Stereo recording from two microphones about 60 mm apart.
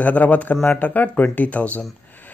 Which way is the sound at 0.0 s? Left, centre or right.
Left.